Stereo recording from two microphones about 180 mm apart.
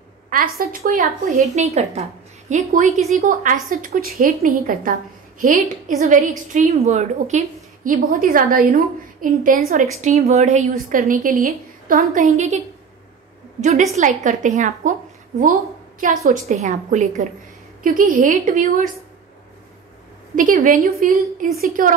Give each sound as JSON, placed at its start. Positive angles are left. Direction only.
{"t": 0.3, "sound": "a woman's voice", "side_deg": -50}
{"t": 10.0, "sound": "a woman's voice", "side_deg": -35}
{"t": 12.0, "sound": "a woman's voice", "side_deg": -40}
{"t": 13.6, "sound": "a woman's voice", "side_deg": -45}
{"t": 20.3, "sound": "a woman's voice", "side_deg": -50}